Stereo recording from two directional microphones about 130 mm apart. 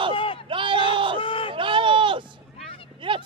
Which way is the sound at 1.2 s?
45° left (ahead or behind).